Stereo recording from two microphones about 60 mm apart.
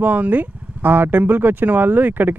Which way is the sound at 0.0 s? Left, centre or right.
Right.